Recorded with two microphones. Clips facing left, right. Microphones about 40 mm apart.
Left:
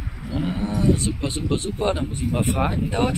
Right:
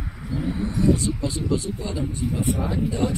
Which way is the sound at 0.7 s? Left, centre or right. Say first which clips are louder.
Right 1 dB; left.